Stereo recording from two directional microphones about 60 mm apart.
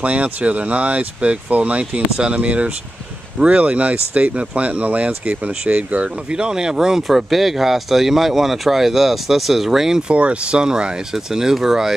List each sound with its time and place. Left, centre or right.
0.0 s speech: right
10.1 s speech: centre